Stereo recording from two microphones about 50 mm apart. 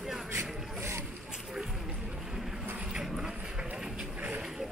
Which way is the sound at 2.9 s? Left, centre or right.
Centre.